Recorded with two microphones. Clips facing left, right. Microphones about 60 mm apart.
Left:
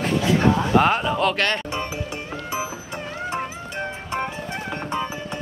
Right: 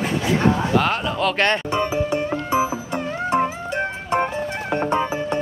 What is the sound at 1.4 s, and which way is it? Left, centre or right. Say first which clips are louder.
Music: right 4 dB; right.